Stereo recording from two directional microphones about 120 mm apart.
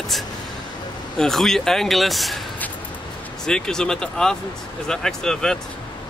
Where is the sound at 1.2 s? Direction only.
5° left (ahead or behind).